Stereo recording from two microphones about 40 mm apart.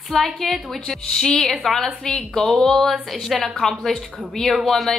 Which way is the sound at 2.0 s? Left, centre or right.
Centre.